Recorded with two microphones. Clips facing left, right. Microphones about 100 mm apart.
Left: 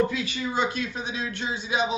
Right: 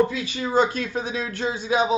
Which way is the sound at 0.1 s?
30° right (ahead or behind).